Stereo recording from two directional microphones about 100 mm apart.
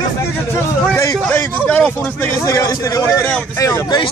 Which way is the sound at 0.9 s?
30° left (ahead or behind).